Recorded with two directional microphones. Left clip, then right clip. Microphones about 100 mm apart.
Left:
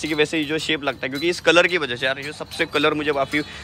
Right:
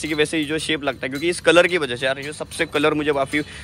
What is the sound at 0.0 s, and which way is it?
Speech, 30° left (ahead or behind).